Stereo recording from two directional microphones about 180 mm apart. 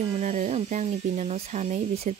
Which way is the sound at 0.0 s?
30° right (ahead or behind).